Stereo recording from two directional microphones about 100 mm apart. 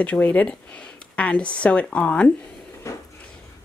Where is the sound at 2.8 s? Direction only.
30° left (ahead or behind).